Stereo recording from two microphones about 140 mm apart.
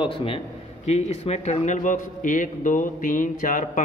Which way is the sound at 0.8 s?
50° left (ahead or behind).